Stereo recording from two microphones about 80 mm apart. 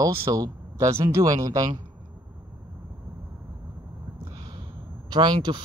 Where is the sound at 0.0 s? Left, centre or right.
Right.